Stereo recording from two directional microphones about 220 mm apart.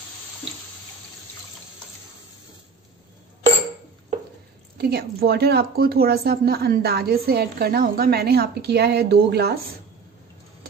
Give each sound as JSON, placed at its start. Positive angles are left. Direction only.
{"t": 4.7, "sound": "a woman's voice", "side_deg": -45}